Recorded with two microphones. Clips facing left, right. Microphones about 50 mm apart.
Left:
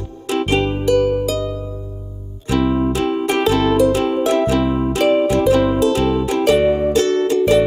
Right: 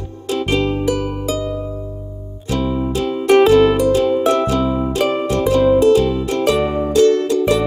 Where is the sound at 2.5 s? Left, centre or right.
Left.